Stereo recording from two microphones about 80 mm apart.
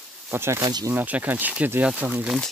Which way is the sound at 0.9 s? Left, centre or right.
Right.